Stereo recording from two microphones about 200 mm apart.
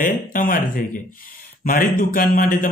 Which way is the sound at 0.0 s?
40° left (ahead or behind).